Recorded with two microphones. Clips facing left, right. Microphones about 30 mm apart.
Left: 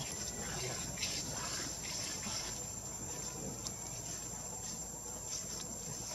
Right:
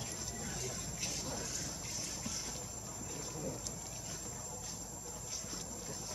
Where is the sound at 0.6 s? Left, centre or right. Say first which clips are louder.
Left 1 dB; left.